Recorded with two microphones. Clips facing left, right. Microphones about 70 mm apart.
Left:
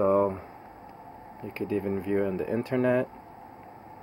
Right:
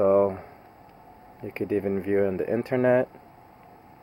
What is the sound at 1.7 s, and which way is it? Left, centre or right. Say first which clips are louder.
Speech: right 3 dB; centre.